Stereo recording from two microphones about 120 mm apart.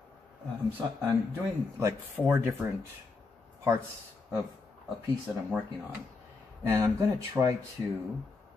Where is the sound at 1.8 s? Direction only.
20° right (ahead or behind).